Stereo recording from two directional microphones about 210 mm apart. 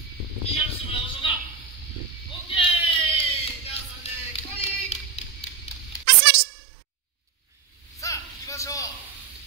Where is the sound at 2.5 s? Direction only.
25° left (ahead or behind).